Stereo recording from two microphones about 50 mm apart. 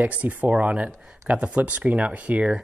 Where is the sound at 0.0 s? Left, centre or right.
Right.